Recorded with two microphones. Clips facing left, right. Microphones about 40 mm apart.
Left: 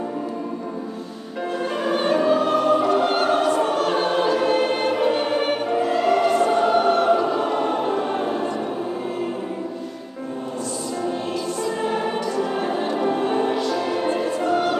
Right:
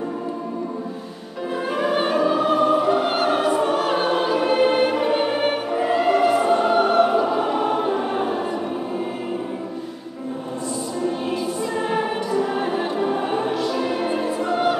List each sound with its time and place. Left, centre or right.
1.8 s music: centre
5.8 s choir: centre
11.2 s choir: centre
12.5 s music: centre